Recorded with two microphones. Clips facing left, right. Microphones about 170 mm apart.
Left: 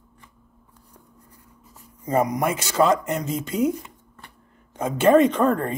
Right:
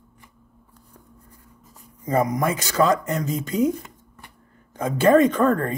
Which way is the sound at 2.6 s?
40° right (ahead or behind).